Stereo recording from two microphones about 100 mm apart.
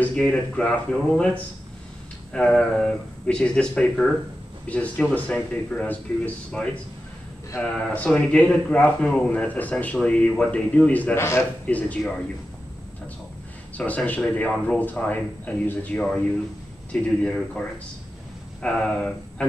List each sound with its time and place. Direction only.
0.0 s a man's voice: 10° left (ahead or behind)
7.9 s a man's voice: 15° left (ahead or behind)
11.1 s a man's voice: 25° left (ahead or behind)
11.6 s speech: 15° left (ahead or behind)
13.7 s a man's voice: 15° left (ahead or behind)